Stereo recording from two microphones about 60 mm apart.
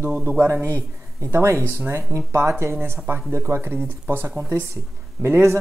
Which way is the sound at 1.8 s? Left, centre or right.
Right.